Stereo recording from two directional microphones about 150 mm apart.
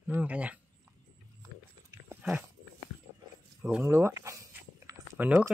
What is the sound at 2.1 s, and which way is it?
Dog, 10° right (ahead or behind).